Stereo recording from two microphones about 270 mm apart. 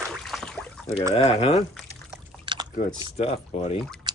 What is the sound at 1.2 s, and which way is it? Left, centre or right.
Speech, left.